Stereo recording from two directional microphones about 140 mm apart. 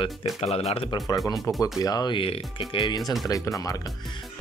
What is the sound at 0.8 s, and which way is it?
Speech, 25° left (ahead or behind).